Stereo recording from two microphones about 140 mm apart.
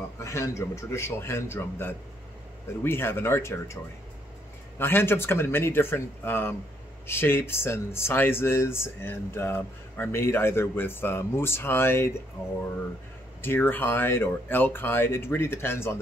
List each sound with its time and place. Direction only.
0.2 s a man's voice: 20° left (ahead or behind)
13.4 s speech: 15° left (ahead or behind)